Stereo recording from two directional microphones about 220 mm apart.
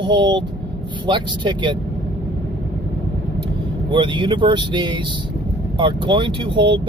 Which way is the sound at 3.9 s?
20° right (ahead or behind).